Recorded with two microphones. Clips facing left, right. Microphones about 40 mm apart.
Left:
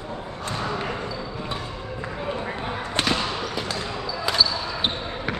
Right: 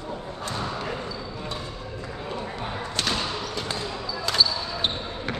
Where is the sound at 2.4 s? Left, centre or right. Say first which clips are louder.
Left 3 dB; left.